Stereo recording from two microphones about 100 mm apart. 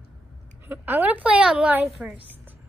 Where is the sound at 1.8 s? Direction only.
Centre (ahead or behind).